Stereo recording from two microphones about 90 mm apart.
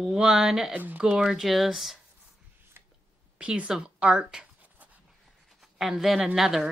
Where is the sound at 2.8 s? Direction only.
25° right (ahead or behind).